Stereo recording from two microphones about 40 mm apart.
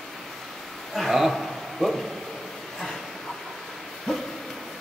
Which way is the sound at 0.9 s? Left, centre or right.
Centre.